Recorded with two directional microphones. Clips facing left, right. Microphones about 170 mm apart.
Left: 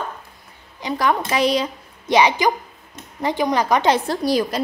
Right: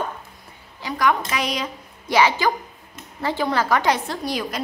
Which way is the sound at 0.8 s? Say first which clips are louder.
Left 1 dB; 30° left (ahead or behind).